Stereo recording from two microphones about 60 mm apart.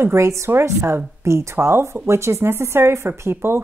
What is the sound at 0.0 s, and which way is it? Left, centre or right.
A woman's voice, right.